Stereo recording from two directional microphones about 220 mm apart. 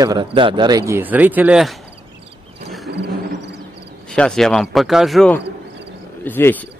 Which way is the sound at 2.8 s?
50° right (ahead or behind).